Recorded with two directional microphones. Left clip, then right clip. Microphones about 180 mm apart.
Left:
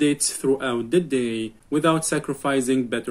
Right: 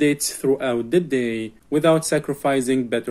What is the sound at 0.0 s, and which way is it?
Speech, 15° right (ahead or behind).